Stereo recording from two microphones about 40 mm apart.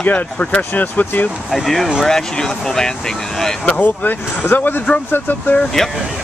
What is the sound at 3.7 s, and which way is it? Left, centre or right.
Speech, left.